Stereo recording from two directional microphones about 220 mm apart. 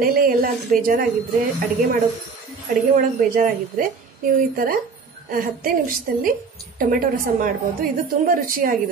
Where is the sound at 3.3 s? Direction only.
35° right (ahead or behind).